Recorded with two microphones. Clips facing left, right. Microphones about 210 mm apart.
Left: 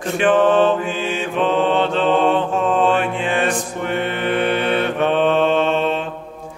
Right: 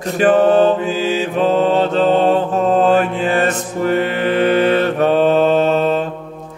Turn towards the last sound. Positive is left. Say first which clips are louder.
# right 4 dB
turn(degrees=-40)  # may be behind; listen again after turning